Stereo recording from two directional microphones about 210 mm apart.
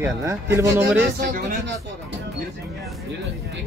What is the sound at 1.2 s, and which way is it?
Speech, 35° right (ahead or behind).